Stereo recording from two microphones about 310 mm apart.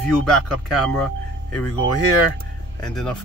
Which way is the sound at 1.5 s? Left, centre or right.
Left.